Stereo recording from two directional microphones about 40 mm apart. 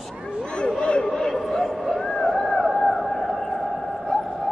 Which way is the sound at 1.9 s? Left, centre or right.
Left.